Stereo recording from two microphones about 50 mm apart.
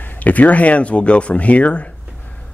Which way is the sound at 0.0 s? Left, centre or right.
Left.